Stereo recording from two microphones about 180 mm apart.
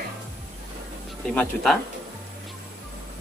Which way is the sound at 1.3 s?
5° left (ahead or behind).